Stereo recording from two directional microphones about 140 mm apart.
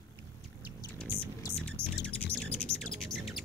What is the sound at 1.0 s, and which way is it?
Music, 15° right (ahead or behind).